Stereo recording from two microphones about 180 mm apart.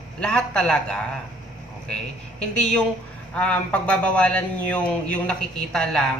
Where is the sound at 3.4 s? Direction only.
5° left (ahead or behind).